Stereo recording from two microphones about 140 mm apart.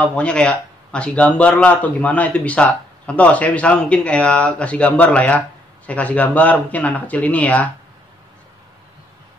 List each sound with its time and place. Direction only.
0.0 s speech: 10° left (ahead or behind)